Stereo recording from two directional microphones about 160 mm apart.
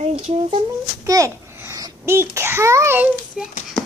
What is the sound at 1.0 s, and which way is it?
A child's voice, 20° right (ahead or behind).